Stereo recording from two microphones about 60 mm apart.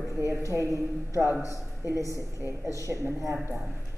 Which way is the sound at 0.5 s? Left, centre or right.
Right.